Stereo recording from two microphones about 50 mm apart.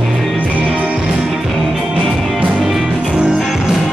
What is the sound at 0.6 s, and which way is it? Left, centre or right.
Music, centre.